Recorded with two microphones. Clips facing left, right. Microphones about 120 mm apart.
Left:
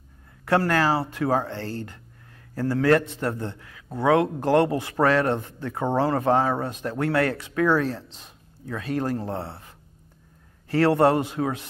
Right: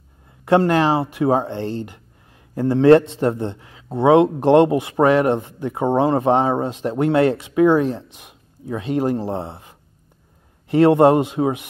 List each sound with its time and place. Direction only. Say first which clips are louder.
0.5 s a man's voice: right 6 dB; 20° right (ahead or behind)